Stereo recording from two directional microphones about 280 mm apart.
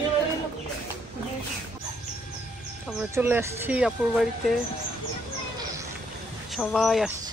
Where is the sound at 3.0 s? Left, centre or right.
Centre.